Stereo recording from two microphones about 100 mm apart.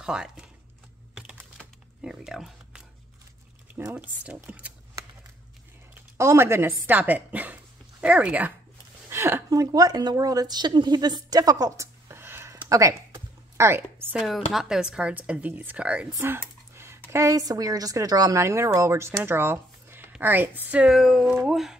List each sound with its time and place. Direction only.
0.0 s speech: 5° right (ahead or behind)
2.0 s speech: 5° right (ahead or behind)
3.9 s speech: 15° right (ahead or behind)
6.1 s speech: 25° right (ahead or behind)
9.1 s a sound: 25° right (ahead or behind)
9.5 s a woman's voice: 35° right (ahead or behind)
12.6 s a sound: 35° right (ahead or behind)
14.1 s speech: centre (ahead or behind)
16.2 s speech: 25° right (ahead or behind)
19.2 s a sound: 25° right (ahead or behind)
20.1 s speech: 20° right (ahead or behind)